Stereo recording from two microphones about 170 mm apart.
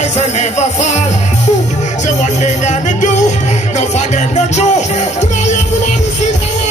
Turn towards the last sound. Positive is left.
turn(degrees=45)  # may be behind; listen again after turning